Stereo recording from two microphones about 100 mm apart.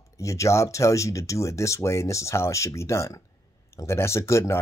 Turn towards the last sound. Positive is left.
turn(degrees=25)  # may be behind; listen again after turning